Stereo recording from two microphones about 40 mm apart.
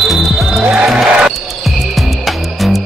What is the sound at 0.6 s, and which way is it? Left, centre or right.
Basketball bounce, right.